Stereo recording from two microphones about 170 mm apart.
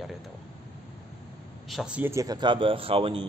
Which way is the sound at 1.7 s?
5° right (ahead or behind).